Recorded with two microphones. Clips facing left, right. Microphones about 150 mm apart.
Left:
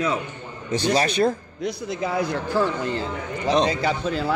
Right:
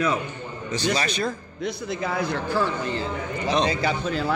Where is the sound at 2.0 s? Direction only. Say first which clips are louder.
Left 3 dB; 10° left (ahead or behind).